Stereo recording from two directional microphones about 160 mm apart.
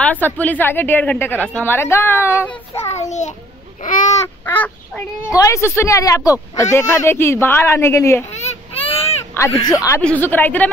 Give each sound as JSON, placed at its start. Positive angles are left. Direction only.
{"t": 0.0, "sound": "a man's voice", "side_deg": 10}
{"t": 2.8, "sound": "a child's voice", "side_deg": 45}
{"t": 4.5, "sound": "a man's voice", "side_deg": 10}
{"t": 8.3, "sound": "a sound", "side_deg": 40}
{"t": 9.6, "sound": "a woman's voice", "side_deg": 25}